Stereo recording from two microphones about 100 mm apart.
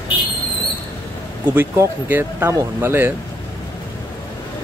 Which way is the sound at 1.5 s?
20° right (ahead or behind).